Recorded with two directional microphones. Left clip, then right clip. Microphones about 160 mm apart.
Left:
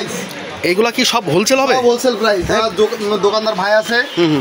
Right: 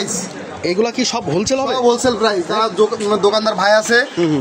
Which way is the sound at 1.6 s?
25° left (ahead or behind).